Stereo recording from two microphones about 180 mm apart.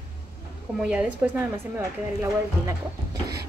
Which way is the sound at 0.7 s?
5° right (ahead or behind).